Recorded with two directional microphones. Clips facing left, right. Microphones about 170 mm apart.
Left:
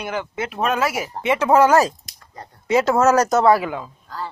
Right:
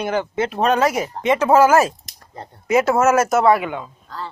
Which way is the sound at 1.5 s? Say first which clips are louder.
Right 1 dB; 25° right (ahead or behind).